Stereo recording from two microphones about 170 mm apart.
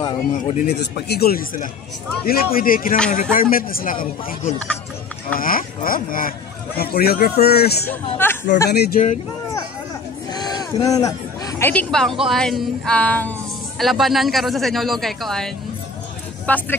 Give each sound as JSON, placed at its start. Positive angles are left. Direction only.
{"t": 0.6, "sound": "a man's voice", "side_deg": 70}
{"t": 7.9, "sound": "speech", "side_deg": 10}
{"t": 8.6, "sound": "speech", "side_deg": 70}
{"t": 10.3, "sound": "speech", "side_deg": 25}